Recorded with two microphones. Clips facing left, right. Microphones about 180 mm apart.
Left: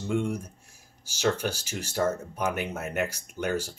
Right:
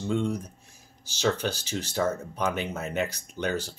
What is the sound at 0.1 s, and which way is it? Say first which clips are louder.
Speech: even; 10° left (ahead or behind).